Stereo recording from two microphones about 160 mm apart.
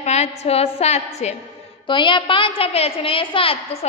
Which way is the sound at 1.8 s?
30° left (ahead or behind).